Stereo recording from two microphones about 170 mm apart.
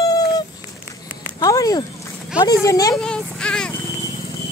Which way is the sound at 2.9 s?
5° left (ahead or behind).